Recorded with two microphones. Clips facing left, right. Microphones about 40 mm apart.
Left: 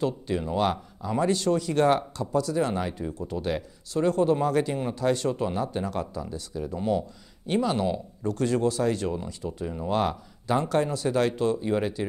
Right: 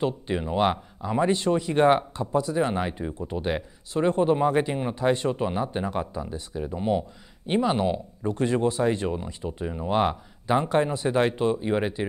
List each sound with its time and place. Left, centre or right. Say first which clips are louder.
0.0 s speech: right 1 dB; right